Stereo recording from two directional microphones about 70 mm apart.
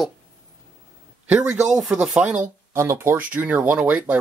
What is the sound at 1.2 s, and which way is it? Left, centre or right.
Speech, right.